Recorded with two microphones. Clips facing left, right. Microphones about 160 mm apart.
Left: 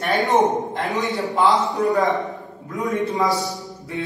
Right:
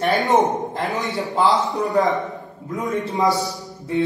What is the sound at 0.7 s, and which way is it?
A man's voice, centre (ahead or behind).